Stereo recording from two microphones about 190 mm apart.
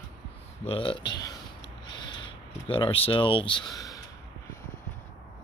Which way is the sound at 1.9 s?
25° left (ahead or behind).